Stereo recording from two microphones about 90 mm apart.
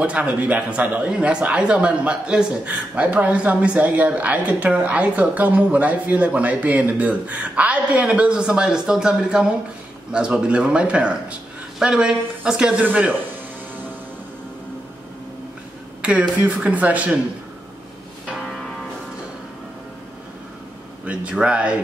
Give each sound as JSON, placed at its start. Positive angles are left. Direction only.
{"t": 0.0, "sound": "speech", "side_deg": -15}
{"t": 16.0, "sound": "speech", "side_deg": -15}
{"t": 21.0, "sound": "speech", "side_deg": -15}